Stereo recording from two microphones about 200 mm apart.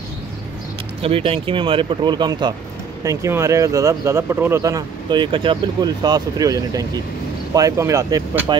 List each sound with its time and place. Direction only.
1.0 s speech: 30° right (ahead or behind)